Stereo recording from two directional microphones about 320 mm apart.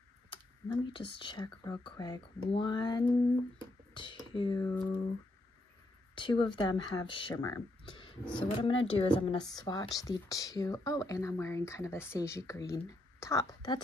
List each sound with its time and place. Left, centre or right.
0.9 s speech: centre
6.1 s speech: centre